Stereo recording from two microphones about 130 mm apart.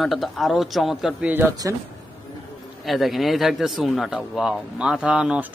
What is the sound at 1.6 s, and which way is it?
Speech, 20° right (ahead or behind).